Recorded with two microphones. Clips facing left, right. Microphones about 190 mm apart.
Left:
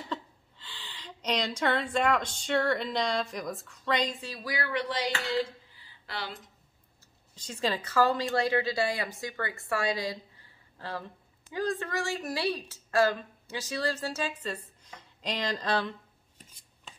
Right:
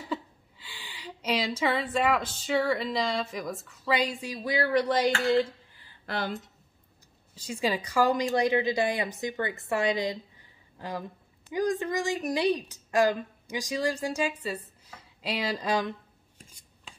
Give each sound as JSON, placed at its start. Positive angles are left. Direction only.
{"t": 0.1, "sound": "a woman's voice", "side_deg": -10}
{"t": 4.6, "sound": "a sound", "side_deg": -40}
{"t": 7.3, "sound": "a woman's voice", "side_deg": -10}